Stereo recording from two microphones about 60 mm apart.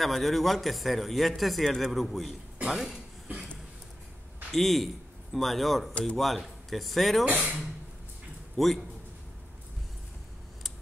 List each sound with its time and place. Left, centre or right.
0.0 s speech: centre
4.5 s speech: centre
7.2 s speech: centre
8.5 s speech: centre